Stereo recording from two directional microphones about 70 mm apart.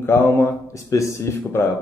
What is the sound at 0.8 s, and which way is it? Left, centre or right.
Speech, left.